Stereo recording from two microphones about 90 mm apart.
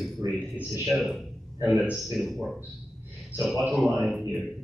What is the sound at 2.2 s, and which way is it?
A man's voice, centre (ahead or behind).